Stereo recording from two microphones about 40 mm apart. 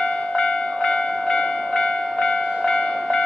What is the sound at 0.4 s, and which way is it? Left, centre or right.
Train, left.